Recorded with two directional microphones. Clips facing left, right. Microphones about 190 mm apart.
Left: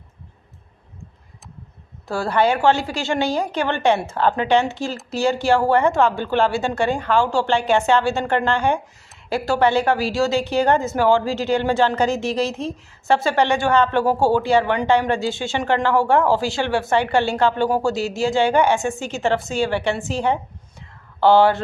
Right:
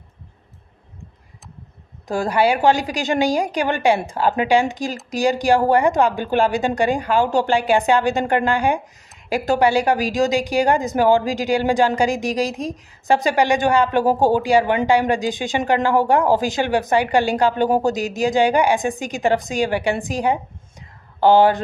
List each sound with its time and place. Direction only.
2.0 s speech: 15° right (ahead or behind)